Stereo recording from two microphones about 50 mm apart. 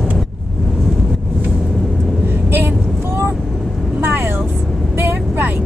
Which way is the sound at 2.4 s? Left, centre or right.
Right.